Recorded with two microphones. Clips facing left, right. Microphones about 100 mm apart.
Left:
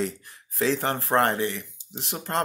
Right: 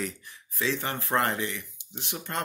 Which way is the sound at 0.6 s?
50° left (ahead or behind).